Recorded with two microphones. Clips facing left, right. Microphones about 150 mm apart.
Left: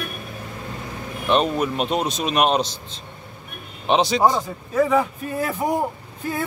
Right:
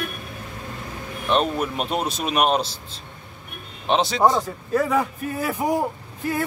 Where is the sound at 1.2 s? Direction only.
Centre (ahead or behind).